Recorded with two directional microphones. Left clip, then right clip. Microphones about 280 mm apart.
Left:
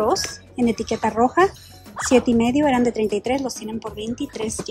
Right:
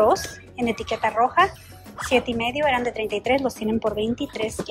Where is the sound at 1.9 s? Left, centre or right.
Centre.